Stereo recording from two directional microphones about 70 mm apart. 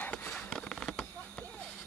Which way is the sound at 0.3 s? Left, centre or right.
Centre.